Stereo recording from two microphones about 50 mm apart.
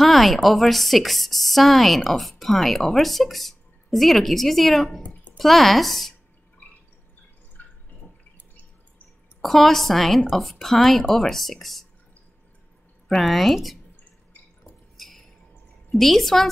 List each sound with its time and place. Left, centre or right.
0.0 s speech: centre
7.6 s drip: left
9.4 s speech: centre
13.1 s speech: centre
14.6 s a sound: centre
15.7 s a woman's voice: centre